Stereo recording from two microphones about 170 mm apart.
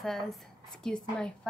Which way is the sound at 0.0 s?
Centre (ahead or behind).